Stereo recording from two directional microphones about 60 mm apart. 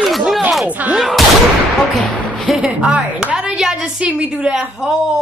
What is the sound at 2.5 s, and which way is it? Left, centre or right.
A woman's voice, centre.